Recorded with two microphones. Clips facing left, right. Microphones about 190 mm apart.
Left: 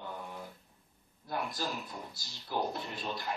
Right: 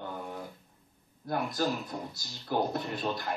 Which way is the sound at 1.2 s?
50° right (ahead or behind).